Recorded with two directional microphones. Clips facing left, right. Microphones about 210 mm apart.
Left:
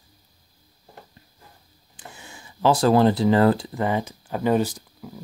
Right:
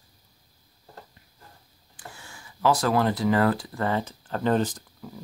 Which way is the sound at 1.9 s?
20° left (ahead or behind).